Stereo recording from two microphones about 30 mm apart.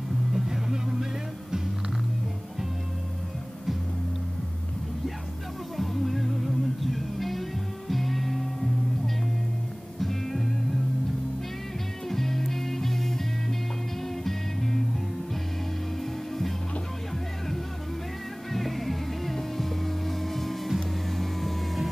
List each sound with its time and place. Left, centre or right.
0.3 s music: centre
5.8 s music: centre
9.9 s music: centre
12.1 s music: centre
18.5 s music: centre